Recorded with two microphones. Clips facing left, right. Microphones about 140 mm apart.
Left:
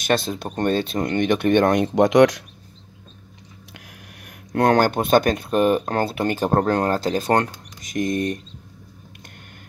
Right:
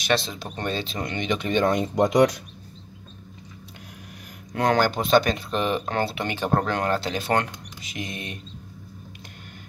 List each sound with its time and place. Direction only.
0.0 s speech: 50° left (ahead or behind); by 2.4 s 90° left
4.5 s speech: 55° left (ahead or behind)